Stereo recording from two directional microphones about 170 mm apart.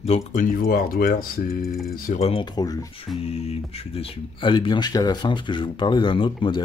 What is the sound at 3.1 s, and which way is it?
Speech, 35° left (ahead or behind).